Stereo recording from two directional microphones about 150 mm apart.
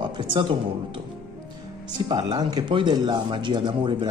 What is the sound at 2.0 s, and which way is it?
Speech, 30° right (ahead or behind).